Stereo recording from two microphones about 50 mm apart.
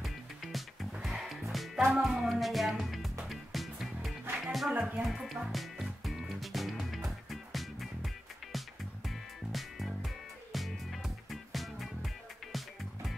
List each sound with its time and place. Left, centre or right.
0.0 s music: centre
4.7 s music: right
5.0 s music: centre